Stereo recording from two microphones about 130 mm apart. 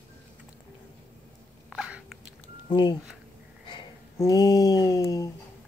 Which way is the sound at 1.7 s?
5° right (ahead or behind).